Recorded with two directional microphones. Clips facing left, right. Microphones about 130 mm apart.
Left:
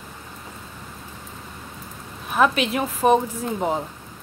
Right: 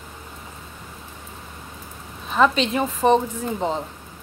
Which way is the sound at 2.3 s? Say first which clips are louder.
Right 1 dB; 10° left (ahead or behind).